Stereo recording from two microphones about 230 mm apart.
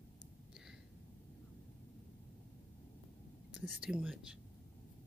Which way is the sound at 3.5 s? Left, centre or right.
Centre.